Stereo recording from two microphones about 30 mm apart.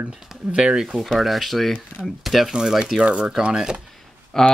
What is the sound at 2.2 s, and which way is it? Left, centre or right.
Speech, centre.